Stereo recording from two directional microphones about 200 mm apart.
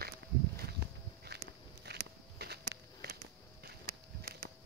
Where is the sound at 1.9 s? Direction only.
55° right (ahead or behind).